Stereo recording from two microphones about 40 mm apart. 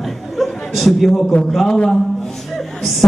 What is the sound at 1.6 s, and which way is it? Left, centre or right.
Speech, centre.